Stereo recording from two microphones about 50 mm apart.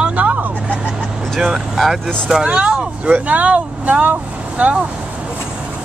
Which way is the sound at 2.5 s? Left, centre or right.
Right.